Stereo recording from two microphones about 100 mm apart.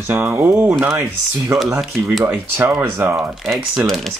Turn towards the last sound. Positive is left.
turn(degrees=5)  # may be behind; listen again after turning